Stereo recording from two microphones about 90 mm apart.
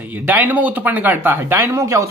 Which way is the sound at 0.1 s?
20° right (ahead or behind).